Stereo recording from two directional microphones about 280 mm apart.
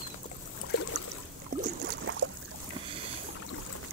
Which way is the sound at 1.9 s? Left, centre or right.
Right.